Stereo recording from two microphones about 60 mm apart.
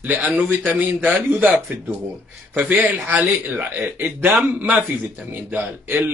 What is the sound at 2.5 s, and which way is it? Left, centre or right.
A man's voice, right.